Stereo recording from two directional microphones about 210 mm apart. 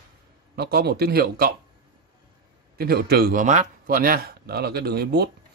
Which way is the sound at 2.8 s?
45° right (ahead or behind).